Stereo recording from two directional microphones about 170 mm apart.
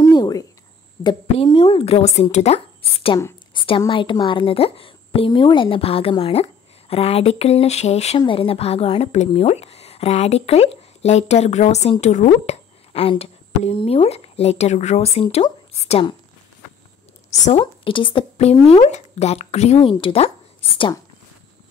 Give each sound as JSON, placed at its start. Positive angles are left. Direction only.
{"t": 0.0, "sound": "a sound", "side_deg": 25}
{"t": 1.0, "sound": "a woman's voice", "side_deg": 30}
{"t": 17.3, "sound": "a woman's voice", "side_deg": 35}